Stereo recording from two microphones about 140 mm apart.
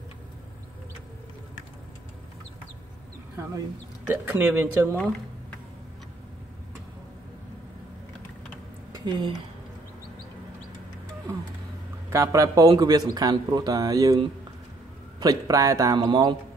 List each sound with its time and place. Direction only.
4.1 s speech: 15° right (ahead or behind)
8.9 s speech: 30° right (ahead or behind)
12.1 s a man's voice: 20° right (ahead or behind)